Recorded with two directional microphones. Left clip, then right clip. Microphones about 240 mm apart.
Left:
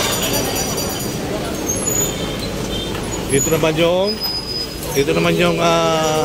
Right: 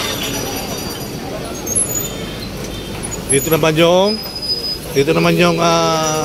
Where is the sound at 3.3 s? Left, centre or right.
Right.